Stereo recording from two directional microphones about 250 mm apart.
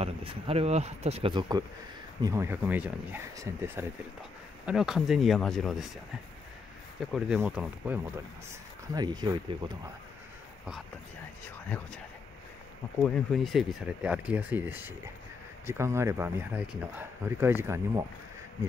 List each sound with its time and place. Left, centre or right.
0.0 s speech: right; by 5.9 s centre
7.0 s speech: centre
8.9 s speech: centre
11.7 s speech: centre
13.0 s speech: centre